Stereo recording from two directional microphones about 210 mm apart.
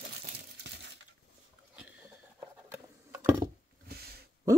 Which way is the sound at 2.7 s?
10° right (ahead or behind).